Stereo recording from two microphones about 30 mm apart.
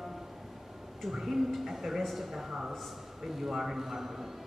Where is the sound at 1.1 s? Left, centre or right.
Centre.